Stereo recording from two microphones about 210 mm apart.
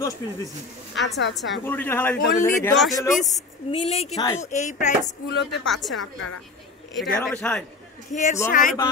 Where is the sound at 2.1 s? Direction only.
40° left (ahead or behind).